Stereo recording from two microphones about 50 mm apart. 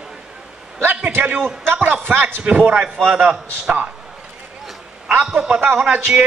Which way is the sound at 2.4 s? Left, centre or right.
Right.